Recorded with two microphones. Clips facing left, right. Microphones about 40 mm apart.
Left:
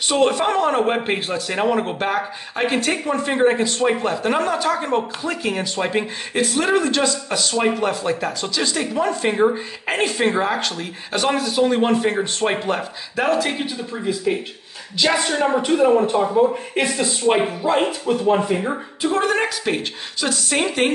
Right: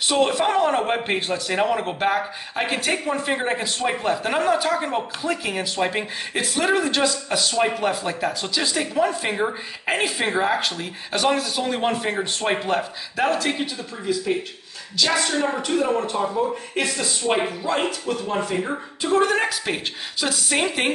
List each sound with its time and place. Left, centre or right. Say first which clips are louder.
0.1 s a man's voice: left 2 dB; centre
15.0 s speech: left 2 dB; left
18.9 s a man's voice: even; centre